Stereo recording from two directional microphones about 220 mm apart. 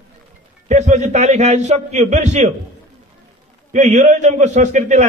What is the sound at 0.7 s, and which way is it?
A man's voice, 35° right (ahead or behind).